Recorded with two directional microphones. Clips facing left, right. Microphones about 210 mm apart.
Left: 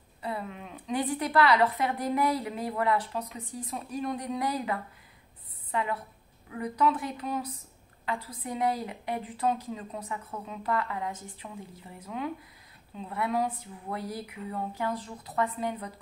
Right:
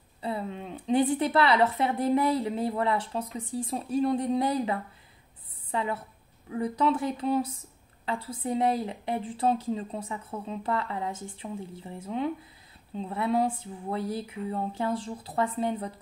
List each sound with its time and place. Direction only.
0.2 s a woman's voice: 30° right (ahead or behind)